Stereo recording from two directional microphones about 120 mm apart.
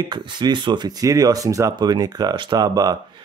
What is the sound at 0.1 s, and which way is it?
Speech, 40° right (ahead or behind).